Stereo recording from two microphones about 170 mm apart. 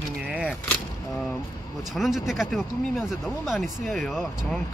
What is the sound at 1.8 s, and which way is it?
Speech, centre (ahead or behind).